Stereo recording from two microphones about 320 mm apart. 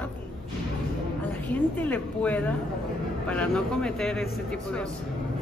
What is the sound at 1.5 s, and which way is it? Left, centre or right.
A woman's voice, centre.